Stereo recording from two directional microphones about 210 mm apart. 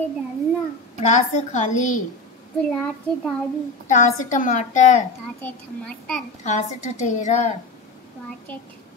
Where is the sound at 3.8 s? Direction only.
35° left (ahead or behind).